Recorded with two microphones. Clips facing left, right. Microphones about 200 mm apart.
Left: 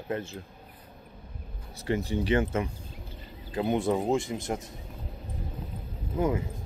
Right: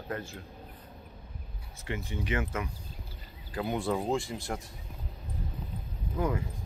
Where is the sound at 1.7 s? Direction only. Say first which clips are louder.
Left 8 dB; 35° left (ahead or behind); by 4.7 s 20° left (ahead or behind).